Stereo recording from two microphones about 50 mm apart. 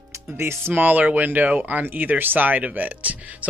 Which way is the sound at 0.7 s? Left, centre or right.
Right.